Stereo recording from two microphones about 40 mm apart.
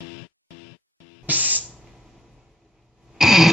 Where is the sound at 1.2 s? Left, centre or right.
Right.